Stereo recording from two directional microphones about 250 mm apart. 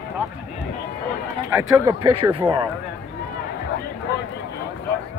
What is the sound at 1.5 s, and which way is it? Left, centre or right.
Speech, centre.